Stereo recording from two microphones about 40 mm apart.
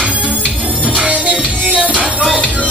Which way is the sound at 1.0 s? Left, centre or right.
Right.